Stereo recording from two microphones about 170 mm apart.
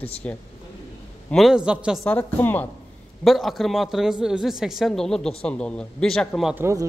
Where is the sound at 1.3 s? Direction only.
Centre (ahead or behind).